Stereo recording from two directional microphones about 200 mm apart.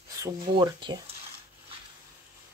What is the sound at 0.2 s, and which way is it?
Speech, 20° right (ahead or behind).